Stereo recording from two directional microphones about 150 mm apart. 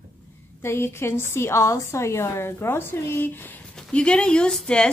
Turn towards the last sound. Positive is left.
turn(degrees=5)  # may be behind; listen again after turning